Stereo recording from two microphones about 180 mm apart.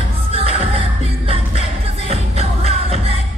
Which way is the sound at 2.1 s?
35° right (ahead or behind).